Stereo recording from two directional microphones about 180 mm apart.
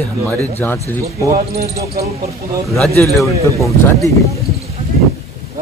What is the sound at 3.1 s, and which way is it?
Speech, centre (ahead or behind).